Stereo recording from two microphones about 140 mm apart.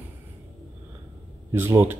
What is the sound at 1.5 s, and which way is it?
Speech, 15° right (ahead or behind).